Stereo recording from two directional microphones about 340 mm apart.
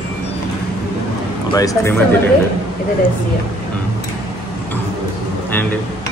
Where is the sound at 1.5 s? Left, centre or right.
Centre.